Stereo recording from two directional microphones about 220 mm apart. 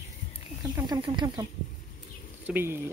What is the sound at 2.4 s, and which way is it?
Speech, 10° right (ahead or behind).